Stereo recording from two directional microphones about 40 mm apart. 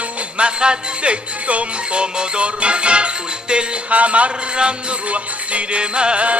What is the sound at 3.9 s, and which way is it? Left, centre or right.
Speech, right.